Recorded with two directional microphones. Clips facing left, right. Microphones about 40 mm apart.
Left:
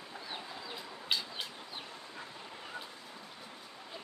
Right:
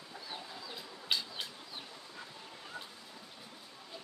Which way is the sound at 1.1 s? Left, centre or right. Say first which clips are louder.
Even; centre.